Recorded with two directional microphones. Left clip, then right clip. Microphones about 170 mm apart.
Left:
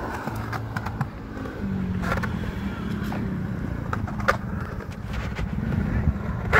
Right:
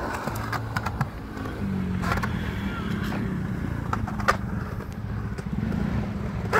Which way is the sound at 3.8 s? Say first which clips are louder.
Even; 60° right (ahead or behind).